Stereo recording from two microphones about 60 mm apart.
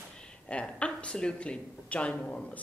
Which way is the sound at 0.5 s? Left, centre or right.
Centre.